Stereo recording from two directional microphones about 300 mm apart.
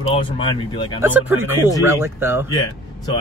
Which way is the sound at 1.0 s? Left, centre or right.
Centre.